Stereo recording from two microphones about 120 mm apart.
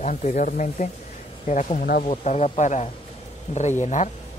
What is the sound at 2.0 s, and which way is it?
A man's voice, 65° left (ahead or behind).